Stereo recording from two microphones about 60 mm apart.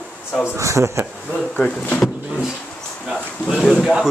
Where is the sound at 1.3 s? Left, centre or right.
Centre.